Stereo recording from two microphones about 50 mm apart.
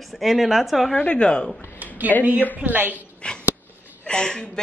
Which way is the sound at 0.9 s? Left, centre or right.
Left.